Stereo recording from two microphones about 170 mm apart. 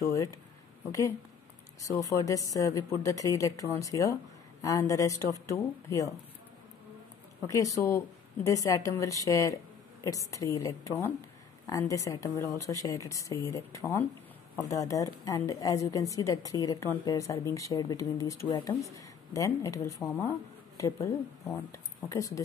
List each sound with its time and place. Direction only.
0.0 s speech: 20° left (ahead or behind)
1.8 s a woman's voice: 20° left (ahead or behind)
7.4 s a woman's voice: 20° left (ahead or behind)